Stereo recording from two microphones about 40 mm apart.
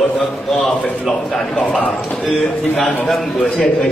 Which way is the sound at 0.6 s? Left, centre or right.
Left.